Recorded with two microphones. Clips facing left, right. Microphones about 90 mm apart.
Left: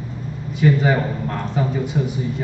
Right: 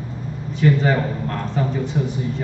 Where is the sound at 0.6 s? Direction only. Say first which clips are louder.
Left 1 dB; 5° left (ahead or behind).